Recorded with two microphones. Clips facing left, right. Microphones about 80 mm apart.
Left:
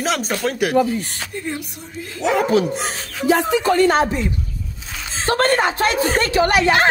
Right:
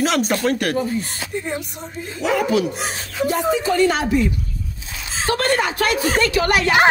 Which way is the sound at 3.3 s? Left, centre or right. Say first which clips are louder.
Left 4 dB; left.